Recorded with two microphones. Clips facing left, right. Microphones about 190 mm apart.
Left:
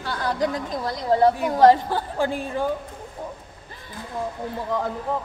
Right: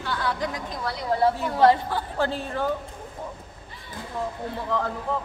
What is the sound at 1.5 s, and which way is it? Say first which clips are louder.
Speech: left 3 dB; 40° left (ahead or behind).